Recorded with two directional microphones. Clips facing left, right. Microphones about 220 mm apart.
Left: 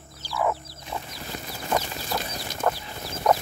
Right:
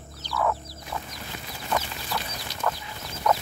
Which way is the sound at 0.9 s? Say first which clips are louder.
Left 1 dB; 25° left (ahead or behind).